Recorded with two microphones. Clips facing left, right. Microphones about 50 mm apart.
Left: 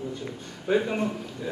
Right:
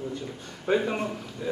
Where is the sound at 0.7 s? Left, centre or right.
Centre.